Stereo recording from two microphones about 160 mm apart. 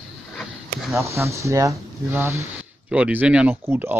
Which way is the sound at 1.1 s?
20° right (ahead or behind).